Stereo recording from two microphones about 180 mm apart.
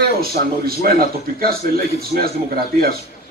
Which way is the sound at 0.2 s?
55° right (ahead or behind).